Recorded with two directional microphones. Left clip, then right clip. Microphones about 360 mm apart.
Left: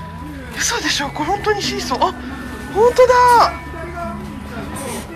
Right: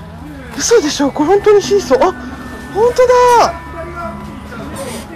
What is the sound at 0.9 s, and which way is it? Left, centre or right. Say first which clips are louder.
Speech: right 7 dB; centre.